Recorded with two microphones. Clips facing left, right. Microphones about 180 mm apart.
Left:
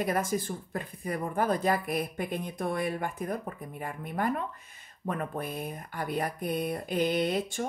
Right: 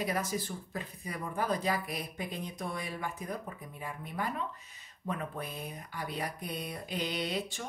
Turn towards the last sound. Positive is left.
turn(degrees=50)  # may be behind; listen again after turning